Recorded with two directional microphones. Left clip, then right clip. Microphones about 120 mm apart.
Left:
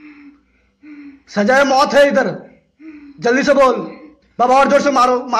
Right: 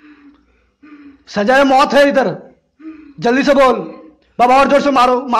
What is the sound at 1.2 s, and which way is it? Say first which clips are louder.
A man's voice: right 1 dB; 50° right (ahead or behind).